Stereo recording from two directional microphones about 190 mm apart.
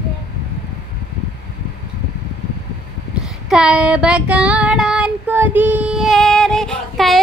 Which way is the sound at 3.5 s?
5° right (ahead or behind).